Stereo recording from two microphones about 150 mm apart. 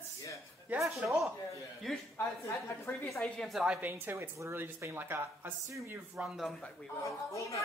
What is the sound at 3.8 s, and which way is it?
Speech, 15° right (ahead or behind).